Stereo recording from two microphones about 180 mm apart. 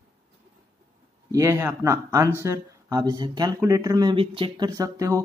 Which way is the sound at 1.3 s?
15° right (ahead or behind).